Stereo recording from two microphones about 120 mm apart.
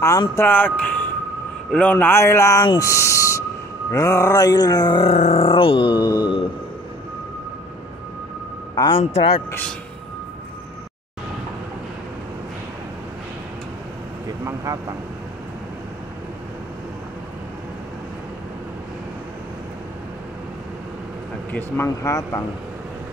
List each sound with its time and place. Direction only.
0.4 s speech: 15° left (ahead or behind)
2.6 s groan: 40° left (ahead or behind)
2.9 s speech: 25° left (ahead or behind)
3.9 s groan: 25° left (ahead or behind)
5.0 s grunt: 60° left (ahead or behind); by 6.4 s 35° left (ahead or behind)
8.7 s a man's voice: 40° left (ahead or behind)
9.0 s grunt: 55° left (ahead or behind)
9.5 s speech: 10° left (ahead or behind)
14.4 s vehicle: 25° right (ahead or behind)
21.5 s speech: 15° left (ahead or behind)
21.8 s speech: 25° left (ahead or behind)